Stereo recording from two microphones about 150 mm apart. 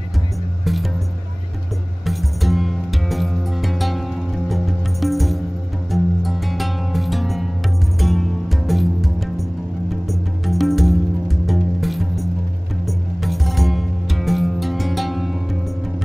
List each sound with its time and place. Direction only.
0.7 s music: centre (ahead or behind)
2.0 s music: centre (ahead or behind)